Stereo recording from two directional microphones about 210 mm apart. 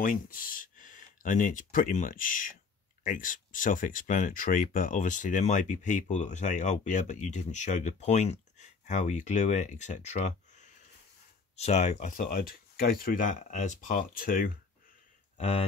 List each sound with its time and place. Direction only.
0.0 s speech: 40° left (ahead or behind)
15.3 s speech: 30° left (ahead or behind)